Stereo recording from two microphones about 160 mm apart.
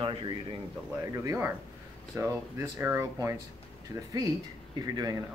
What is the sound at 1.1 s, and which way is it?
Speech, 15° right (ahead or behind).